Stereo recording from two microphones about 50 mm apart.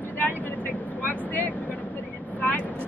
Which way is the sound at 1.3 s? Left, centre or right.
Left.